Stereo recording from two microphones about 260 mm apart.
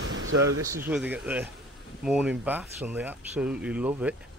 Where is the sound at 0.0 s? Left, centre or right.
Right.